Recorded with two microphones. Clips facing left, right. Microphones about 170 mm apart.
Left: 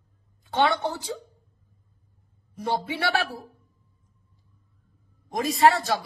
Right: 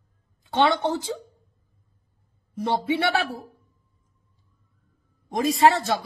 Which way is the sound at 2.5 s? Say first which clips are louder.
Right 4 dB; 25° right (ahead or behind).